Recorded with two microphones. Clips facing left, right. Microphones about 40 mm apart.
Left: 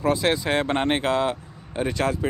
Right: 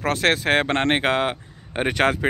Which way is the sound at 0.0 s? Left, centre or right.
Right.